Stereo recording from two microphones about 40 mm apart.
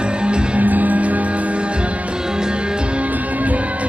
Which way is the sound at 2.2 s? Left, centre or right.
Centre.